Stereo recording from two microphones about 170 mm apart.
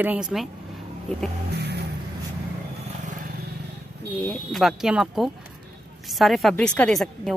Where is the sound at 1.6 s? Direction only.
75° right (ahead or behind).